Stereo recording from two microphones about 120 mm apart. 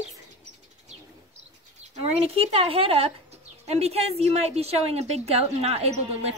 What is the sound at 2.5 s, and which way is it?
A woman's voice, 50° right (ahead or behind).